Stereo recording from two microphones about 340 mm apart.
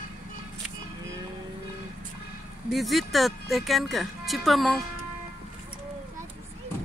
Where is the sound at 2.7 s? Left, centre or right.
Centre.